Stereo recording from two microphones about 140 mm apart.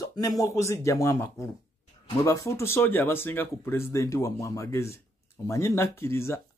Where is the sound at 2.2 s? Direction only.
20° left (ahead or behind).